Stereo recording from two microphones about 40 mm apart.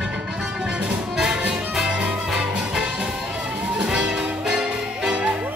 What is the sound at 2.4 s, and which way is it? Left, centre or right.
Music, right.